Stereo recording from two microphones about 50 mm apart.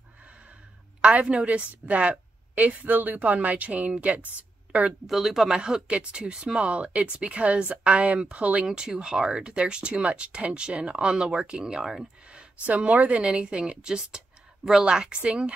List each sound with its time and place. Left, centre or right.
1.2 s a woman's voice: right
5.0 s a woman's voice: centre; by 8.6 s right
8.6 s speech: centre
12.6 s a woman's voice: right